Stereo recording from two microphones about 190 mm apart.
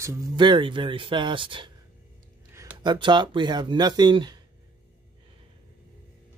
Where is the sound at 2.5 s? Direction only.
15° right (ahead or behind).